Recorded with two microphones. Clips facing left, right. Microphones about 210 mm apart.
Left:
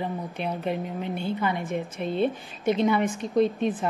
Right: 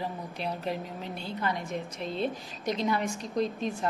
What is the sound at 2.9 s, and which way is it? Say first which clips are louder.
Speech: left 6 dB; 5° left (ahead or behind).